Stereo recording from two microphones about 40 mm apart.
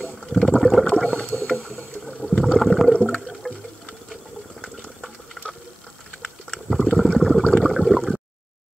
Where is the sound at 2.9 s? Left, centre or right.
Left.